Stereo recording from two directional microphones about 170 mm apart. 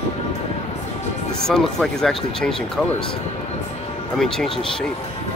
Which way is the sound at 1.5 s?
5° left (ahead or behind).